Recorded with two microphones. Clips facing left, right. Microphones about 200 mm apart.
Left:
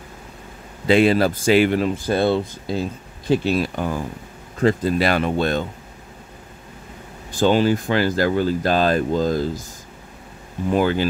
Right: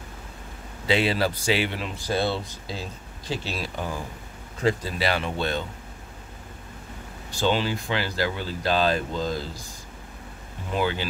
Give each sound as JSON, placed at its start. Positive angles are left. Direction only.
{"t": 0.8, "sound": "speech", "side_deg": 50}
{"t": 7.3, "sound": "speech", "side_deg": 45}
{"t": 10.7, "sound": "speech", "side_deg": 45}